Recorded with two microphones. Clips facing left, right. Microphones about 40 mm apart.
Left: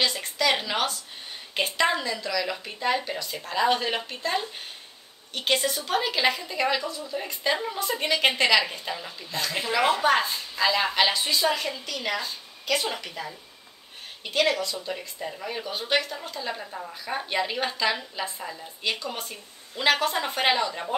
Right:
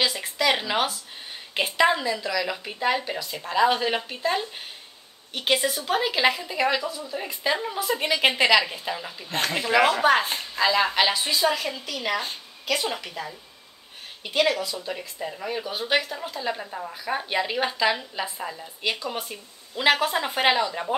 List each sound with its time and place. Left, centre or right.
0.0 s a woman's voice: centre
9.3 s speech: right
10.0 s a woman's voice: centre